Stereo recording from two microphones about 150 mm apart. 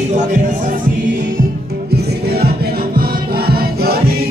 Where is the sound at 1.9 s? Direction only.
90° right.